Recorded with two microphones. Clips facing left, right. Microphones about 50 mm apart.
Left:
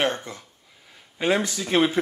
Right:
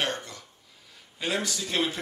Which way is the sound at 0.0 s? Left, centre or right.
Left.